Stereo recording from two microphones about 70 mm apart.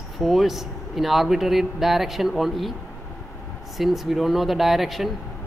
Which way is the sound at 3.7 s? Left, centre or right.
Centre.